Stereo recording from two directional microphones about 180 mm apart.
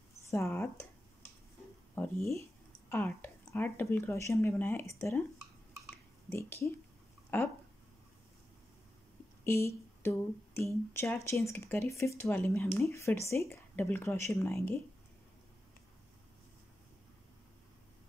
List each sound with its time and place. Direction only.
0.3 s speech: 15° left (ahead or behind)
2.0 s a sound: 15° left (ahead or behind)
2.9 s speech: 15° left (ahead or behind)
6.3 s speech: 15° left (ahead or behind)
9.4 s speech: 15° left (ahead or behind)